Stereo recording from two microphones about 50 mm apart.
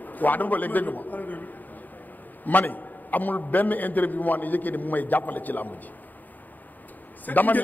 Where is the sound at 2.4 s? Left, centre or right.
Left.